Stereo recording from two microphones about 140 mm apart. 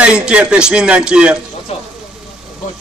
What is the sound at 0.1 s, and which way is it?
A man's voice, 5° right (ahead or behind).